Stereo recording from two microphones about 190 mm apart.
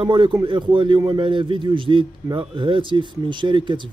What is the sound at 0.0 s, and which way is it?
Speech, 25° right (ahead or behind).